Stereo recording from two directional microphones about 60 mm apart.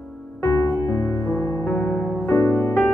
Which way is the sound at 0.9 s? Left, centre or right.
Left.